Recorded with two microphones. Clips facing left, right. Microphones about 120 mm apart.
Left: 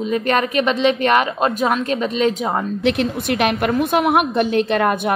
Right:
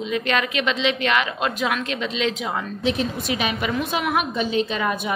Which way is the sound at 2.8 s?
65° left (ahead or behind).